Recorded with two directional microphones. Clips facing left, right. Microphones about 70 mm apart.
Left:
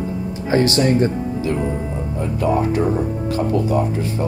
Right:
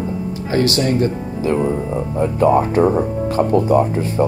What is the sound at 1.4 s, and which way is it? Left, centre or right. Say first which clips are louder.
Speech: right 7 dB; right.